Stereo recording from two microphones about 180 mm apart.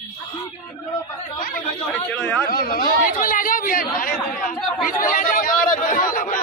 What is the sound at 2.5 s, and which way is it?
Speech, 55° left (ahead or behind).